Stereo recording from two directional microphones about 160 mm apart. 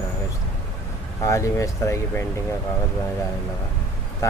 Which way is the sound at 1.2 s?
20° left (ahead or behind).